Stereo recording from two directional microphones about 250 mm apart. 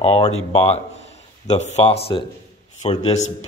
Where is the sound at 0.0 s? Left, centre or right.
Left.